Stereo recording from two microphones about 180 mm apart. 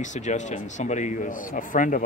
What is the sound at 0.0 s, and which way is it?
Speech, 40° left (ahead or behind).